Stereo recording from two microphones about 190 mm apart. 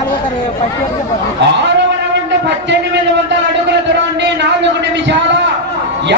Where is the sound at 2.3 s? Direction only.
70° right (ahead or behind).